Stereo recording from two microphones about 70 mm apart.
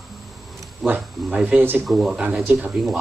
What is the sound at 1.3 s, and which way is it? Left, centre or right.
Speech, centre.